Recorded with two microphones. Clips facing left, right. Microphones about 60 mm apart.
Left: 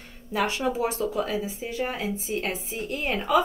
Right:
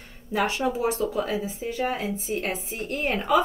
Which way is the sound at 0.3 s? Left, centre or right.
Right.